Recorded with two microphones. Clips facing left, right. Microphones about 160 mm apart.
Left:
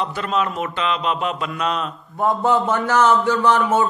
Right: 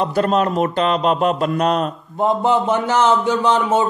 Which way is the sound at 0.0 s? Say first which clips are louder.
Right 5 dB; 45° right (ahead or behind).